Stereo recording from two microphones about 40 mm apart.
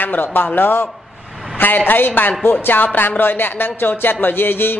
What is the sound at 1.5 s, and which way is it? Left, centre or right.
Speech, left.